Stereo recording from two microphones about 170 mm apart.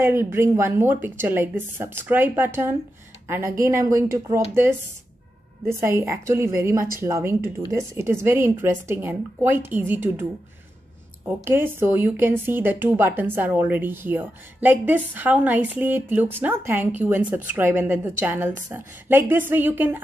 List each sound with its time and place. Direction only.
0.0 s a woman's voice: 15° right (ahead or behind)
5.7 s speech: 15° right (ahead or behind)
11.2 s speech: 15° right (ahead or behind)